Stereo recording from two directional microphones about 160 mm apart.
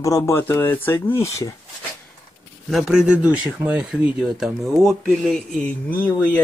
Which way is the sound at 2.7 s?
Centre (ahead or behind).